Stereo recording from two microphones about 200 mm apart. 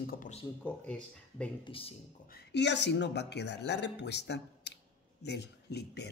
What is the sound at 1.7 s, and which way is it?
Speech, 25° left (ahead or behind).